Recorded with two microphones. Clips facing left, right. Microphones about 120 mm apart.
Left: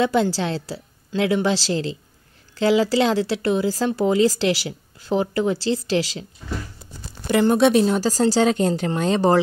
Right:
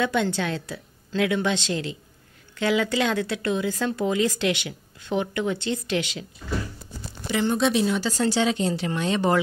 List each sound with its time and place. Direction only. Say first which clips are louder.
0.0 s a woman's voice: left 4 dB; 30° left (ahead or behind)
7.2 s speech: left 6 dB; 55° left (ahead or behind)
7.8 s speech: left 5 dB; 40° left (ahead or behind)